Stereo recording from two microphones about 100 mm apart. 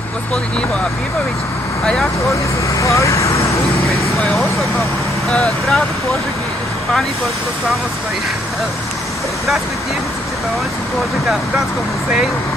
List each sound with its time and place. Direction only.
2.8 s speech: 30° left (ahead or behind)
4.2 s speech: 5° left (ahead or behind)